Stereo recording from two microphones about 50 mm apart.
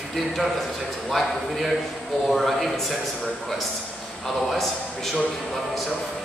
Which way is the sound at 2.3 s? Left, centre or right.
Centre.